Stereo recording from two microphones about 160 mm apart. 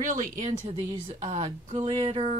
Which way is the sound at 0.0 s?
55° right (ahead or behind).